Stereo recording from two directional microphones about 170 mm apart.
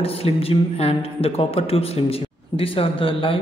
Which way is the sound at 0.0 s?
35° left (ahead or behind).